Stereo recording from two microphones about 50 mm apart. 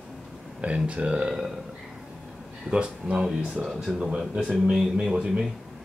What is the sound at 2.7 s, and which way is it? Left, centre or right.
Speech, right.